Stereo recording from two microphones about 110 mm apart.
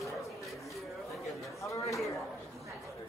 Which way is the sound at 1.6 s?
30° left (ahead or behind).